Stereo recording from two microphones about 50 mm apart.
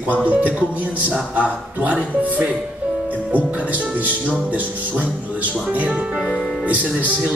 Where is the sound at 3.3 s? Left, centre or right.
Right.